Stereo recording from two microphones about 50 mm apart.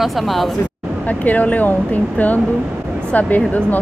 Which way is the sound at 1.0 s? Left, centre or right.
Left.